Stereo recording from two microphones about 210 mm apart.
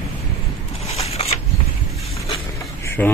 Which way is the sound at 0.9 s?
30° left (ahead or behind).